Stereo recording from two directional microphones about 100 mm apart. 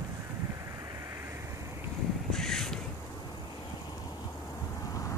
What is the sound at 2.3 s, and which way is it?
Crow, 5° left (ahead or behind).